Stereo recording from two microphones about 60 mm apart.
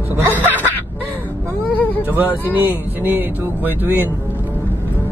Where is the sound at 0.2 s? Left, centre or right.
Right.